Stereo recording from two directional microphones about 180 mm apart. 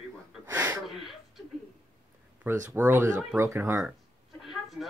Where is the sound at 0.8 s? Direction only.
Centre (ahead or behind).